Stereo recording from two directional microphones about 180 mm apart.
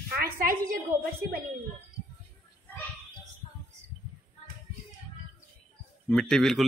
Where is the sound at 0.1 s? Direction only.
55° right (ahead or behind).